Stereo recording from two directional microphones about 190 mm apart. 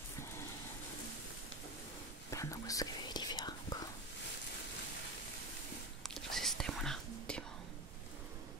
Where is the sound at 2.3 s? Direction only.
15° left (ahead or behind).